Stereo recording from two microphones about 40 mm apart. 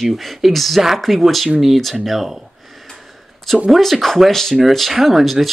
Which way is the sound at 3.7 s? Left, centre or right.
Centre.